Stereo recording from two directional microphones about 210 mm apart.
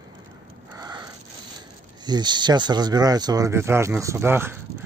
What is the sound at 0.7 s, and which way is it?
Wheeze, 20° right (ahead or behind).